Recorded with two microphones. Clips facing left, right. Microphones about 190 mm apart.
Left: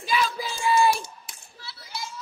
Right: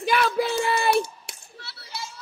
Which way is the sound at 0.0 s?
65° right (ahead or behind).